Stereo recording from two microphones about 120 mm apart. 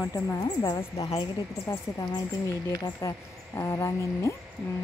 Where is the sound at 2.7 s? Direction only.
25° left (ahead or behind).